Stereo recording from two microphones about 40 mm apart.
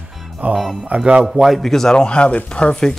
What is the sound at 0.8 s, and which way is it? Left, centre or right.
Speech, right.